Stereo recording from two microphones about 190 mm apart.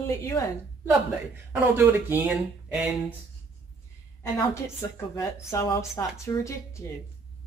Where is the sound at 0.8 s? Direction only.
10° right (ahead or behind).